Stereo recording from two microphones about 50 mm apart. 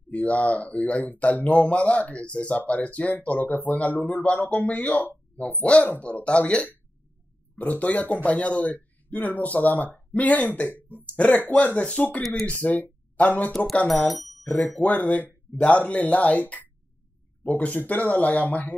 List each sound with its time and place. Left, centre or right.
0.1 s speech: left
12.5 s speech: left
14.0 s speech: centre
14.4 s speech: left